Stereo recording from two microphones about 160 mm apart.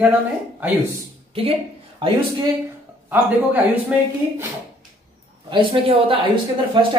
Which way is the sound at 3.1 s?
10° right (ahead or behind).